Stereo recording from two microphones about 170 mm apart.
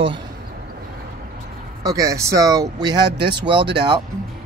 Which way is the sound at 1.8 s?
20° right (ahead or behind).